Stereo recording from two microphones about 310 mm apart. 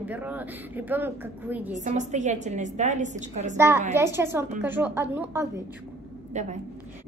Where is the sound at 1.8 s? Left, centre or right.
Right.